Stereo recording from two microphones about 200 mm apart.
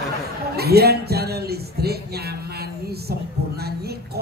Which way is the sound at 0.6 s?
50° right (ahead or behind).